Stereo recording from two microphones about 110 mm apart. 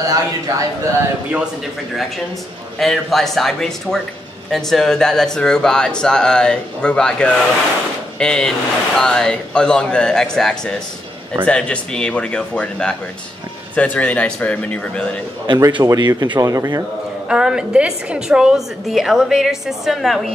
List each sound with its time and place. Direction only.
0.0 s speech: 30° right (ahead or behind)
2.8 s a woman's voice: centre (ahead or behind)
15.4 s speech: 40° right (ahead or behind)
17.3 s a woman's voice: 5° right (ahead or behind)